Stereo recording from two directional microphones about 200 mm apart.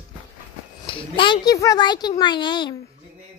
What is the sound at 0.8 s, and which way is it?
A woman's voice, 25° left (ahead or behind).